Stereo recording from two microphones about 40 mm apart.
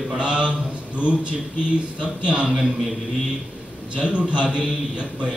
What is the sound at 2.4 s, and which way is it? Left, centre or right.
Speech, centre.